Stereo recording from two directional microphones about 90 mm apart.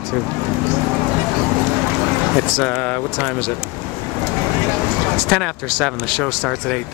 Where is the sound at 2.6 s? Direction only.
15° left (ahead or behind).